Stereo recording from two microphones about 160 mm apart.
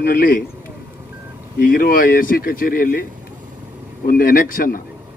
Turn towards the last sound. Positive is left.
turn(degrees=60)  # may be behind; listen again after turning